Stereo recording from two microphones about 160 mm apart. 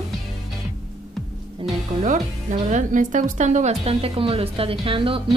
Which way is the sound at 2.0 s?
50° right (ahead or behind).